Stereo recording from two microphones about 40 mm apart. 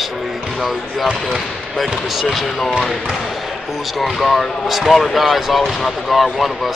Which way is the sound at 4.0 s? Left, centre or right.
Centre.